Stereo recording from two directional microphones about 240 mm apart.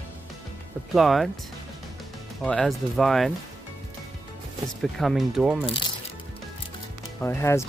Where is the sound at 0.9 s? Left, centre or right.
Centre.